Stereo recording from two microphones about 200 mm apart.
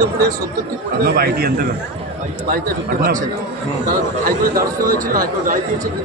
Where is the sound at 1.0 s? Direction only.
50° right (ahead or behind).